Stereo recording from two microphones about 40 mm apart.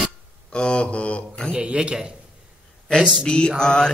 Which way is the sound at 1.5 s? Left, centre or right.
Right.